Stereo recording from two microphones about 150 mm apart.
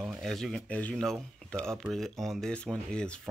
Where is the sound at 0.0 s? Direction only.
Centre (ahead or behind).